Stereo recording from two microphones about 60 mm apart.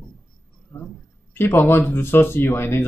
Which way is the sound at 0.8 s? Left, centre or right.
Left.